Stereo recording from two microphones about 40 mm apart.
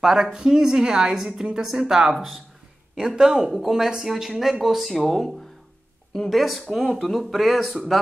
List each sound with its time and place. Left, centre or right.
0.0 s a woman's voice: centre
6.3 s speech: centre